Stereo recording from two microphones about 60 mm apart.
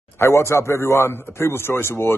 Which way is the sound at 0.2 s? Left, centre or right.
Left.